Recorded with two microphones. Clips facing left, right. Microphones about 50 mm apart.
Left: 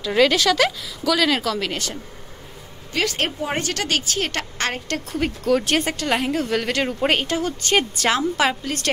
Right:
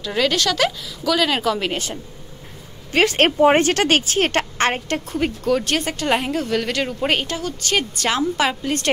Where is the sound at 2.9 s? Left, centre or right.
Right.